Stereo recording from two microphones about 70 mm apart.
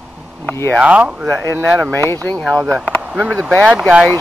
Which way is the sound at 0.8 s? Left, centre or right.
Centre.